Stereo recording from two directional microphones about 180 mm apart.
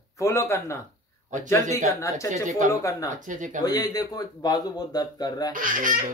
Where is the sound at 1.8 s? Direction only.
15° left (ahead or behind).